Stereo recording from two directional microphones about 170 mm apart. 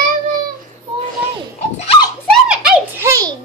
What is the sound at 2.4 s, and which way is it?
Giggle, 5° right (ahead or behind).